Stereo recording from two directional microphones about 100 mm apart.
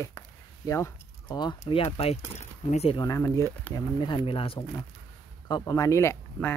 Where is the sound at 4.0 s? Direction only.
50° left (ahead or behind); by 4.6 s 65° left (ahead or behind).